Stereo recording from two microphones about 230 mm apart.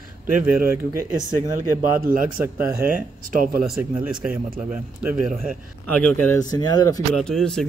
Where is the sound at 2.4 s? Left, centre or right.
Centre.